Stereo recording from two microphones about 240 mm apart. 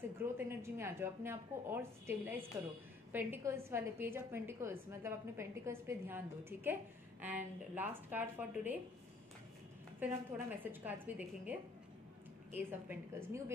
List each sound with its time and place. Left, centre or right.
0.5 s a woman's voice: centre
9.9 s a woman's voice: centre
12.5 s a woman's voice: centre